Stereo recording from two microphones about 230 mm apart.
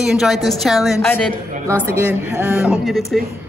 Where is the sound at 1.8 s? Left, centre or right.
Centre.